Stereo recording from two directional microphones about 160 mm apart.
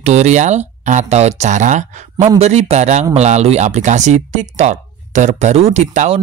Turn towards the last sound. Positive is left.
turn(degrees=-40)  # may be behind; listen again after turning